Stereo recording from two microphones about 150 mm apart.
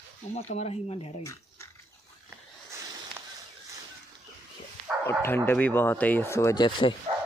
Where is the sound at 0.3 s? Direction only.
45° left (ahead or behind).